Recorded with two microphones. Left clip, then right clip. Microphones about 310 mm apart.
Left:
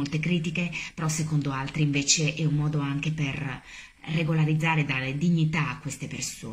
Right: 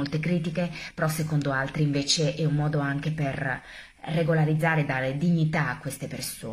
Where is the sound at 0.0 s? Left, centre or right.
Centre.